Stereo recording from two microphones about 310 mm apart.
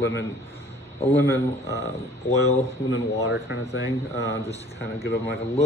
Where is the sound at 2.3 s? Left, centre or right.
Left.